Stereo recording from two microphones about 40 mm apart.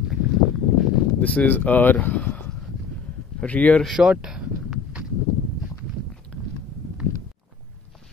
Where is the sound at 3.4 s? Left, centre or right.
Left.